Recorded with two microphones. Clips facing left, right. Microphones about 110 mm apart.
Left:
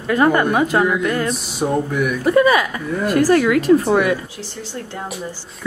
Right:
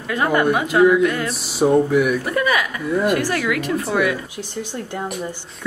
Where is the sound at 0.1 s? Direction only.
40° left (ahead or behind).